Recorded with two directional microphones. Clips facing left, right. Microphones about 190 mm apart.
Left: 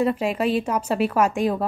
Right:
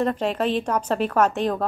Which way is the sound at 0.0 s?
10° left (ahead or behind).